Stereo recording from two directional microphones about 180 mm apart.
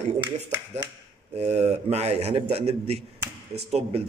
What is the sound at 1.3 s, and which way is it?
A man's voice, 35° right (ahead or behind).